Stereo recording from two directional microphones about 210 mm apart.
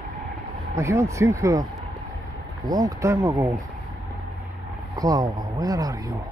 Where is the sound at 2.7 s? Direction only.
15° right (ahead or behind).